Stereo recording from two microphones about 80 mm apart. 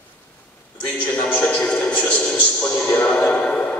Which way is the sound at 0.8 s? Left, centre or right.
Centre.